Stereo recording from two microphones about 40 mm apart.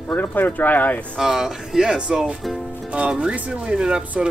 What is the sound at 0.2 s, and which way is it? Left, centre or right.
Speech, left.